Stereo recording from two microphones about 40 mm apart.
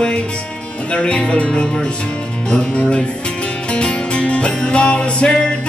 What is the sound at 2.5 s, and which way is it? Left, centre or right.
Speech, left.